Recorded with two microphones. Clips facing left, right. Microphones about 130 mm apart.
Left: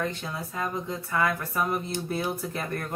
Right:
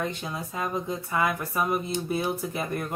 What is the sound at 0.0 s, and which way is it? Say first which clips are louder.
Speech: even; 15° right (ahead or behind).